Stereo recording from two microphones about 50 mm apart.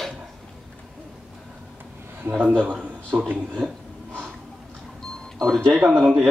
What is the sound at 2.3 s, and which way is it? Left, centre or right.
Speech, right.